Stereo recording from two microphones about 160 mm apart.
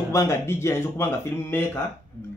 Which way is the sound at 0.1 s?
15° left (ahead or behind).